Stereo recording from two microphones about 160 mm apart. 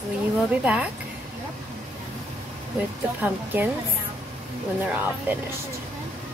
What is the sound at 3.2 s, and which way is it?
Speech, 10° right (ahead or behind).